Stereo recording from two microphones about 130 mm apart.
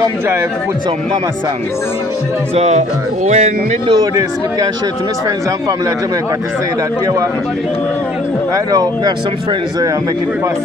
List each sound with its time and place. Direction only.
2.5 s speech: 60° right (ahead or behind)
3.8 s speech: 35° right (ahead or behind)